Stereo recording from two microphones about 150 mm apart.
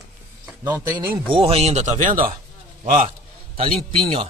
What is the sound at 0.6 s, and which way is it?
Speech, 15° right (ahead or behind).